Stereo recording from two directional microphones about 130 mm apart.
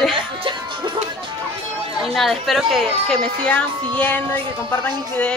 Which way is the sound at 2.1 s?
Centre (ahead or behind).